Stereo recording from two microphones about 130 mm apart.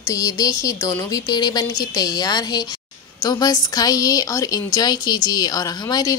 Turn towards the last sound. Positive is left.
turn(degrees=30)  # may be behind; listen again after turning